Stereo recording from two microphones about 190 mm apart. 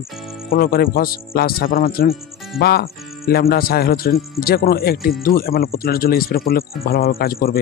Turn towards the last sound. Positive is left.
turn(degrees=50)  # may be behind; listen again after turning